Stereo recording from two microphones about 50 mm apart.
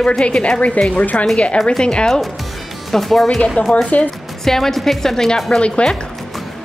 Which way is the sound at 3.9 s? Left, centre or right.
Left.